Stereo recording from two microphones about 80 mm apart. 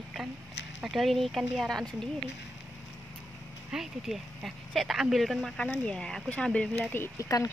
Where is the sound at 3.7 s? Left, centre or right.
Centre.